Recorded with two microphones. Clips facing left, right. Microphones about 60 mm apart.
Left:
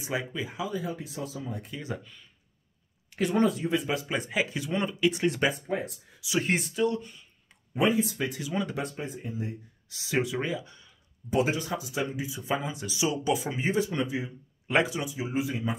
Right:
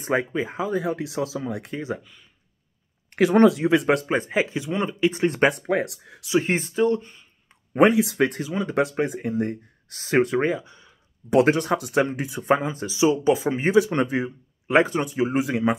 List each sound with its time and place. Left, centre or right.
0.0 s speech: right
0.7 s speech: right
1.8 s speech: right
3.2 s speech: right
4.1 s speech: right
5.4 s speech: right
6.2 s speech: right
7.9 s speech: right
8.4 s speech: right
8.7 s speech: right
10.6 s speech: right
11.2 s speech: right
12.6 s speech: right
13.8 s speech: right